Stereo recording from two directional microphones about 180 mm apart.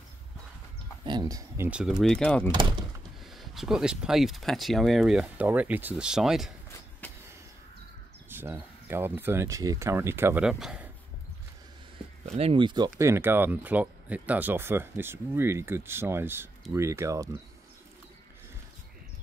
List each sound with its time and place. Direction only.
1.0 s speech: 20° right (ahead or behind)
1.7 s speech: 5° right (ahead or behind)
7.0 s vehicle: 10° left (ahead or behind)
8.3 s speech: 10° right (ahead or behind)
12.3 s speech: 35° right (ahead or behind); by 17.3 s 15° right (ahead or behind)